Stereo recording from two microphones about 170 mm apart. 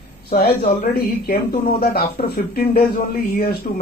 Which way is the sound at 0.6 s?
40° left (ahead or behind).